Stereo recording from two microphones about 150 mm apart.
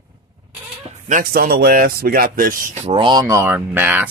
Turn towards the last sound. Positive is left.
turn(degrees=-15)  # may be behind; listen again after turning